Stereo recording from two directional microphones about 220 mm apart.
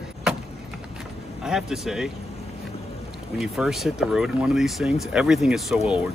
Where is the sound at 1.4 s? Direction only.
Centre (ahead or behind).